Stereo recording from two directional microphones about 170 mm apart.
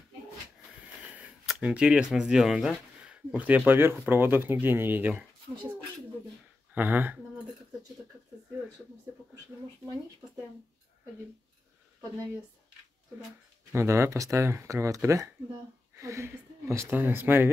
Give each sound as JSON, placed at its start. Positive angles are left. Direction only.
{"t": 1.1, "sound": "speech", "side_deg": -5}
{"t": 6.7, "sound": "speech", "side_deg": -10}
{"t": 13.7, "sound": "speech", "side_deg": -15}